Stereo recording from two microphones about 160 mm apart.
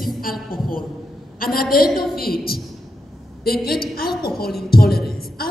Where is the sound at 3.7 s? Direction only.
70° left (ahead or behind).